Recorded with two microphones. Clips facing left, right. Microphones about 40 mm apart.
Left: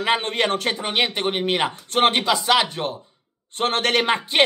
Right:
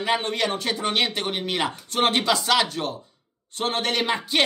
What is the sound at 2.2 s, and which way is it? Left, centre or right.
Speech, centre.